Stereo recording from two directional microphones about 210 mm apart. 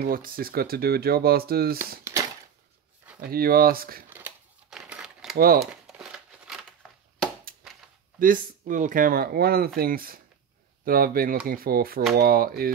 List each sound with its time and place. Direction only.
0.0 s speech: 45° right (ahead or behind)
3.2 s speech: 45° right (ahead or behind)
4.1 s crumpling: 5° right (ahead or behind)
8.2 s speech: 40° right (ahead or behind)